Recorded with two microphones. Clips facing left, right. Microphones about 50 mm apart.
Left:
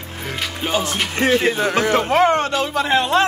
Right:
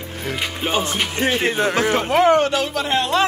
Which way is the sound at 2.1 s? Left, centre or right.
Left.